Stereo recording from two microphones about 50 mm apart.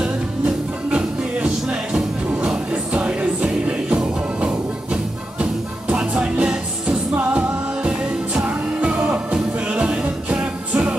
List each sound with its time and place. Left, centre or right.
0.8 s music: centre
7.2 s music: right
7.8 s music: centre